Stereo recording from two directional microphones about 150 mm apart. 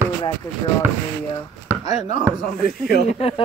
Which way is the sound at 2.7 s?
90° left.